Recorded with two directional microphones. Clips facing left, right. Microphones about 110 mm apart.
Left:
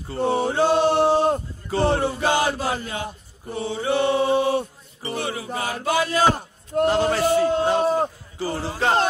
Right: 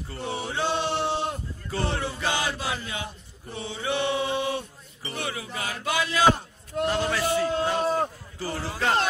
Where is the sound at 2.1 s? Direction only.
40° left (ahead or behind).